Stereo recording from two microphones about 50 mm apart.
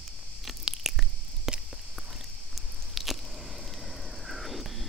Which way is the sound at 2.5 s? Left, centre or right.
Centre.